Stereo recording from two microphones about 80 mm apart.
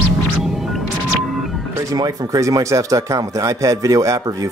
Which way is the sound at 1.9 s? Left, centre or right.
Right.